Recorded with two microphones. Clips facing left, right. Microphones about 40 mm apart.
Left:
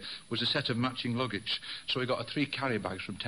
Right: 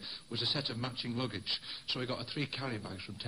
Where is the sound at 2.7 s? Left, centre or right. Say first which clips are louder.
Left 8 dB; left.